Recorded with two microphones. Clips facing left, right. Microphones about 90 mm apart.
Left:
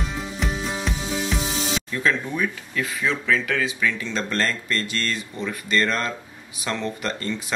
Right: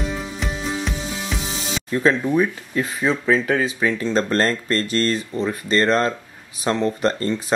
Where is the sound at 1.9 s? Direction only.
35° right (ahead or behind).